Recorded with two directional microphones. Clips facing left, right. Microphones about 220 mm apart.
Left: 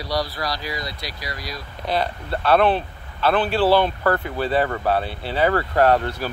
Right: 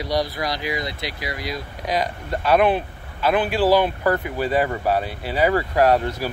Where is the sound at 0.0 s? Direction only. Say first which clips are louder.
Right 2 dB; 20° right (ahead or behind).